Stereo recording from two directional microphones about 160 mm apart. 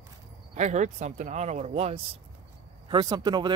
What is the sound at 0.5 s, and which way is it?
Speech, 45° right (ahead or behind).